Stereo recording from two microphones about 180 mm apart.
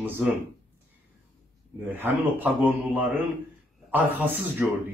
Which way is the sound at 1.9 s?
10° right (ahead or behind).